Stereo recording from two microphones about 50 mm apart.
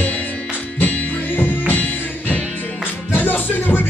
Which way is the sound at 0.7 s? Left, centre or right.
Left.